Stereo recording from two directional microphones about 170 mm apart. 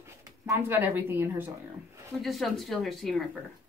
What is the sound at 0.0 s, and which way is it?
Speech, 15° right (ahead or behind).